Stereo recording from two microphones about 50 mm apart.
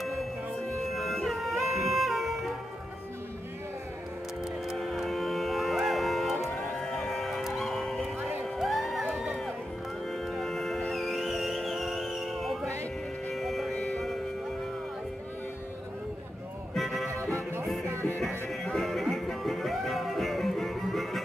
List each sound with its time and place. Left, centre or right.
0.8 s music: centre
4.7 s music: centre
8.2 s music: centre
8.5 s music: centre
10.0 s music: centre
16.7 s music: centre
17.1 s music: right
18.5 s music: centre